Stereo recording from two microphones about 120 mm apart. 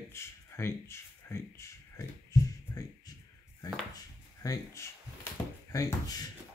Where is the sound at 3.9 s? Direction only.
30° left (ahead or behind).